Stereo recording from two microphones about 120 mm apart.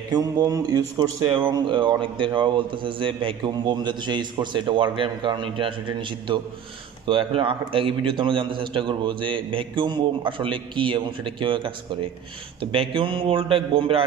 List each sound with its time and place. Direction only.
0.1 s a man's voice: 30° right (ahead or behind); by 14.0 s 50° right (ahead or behind)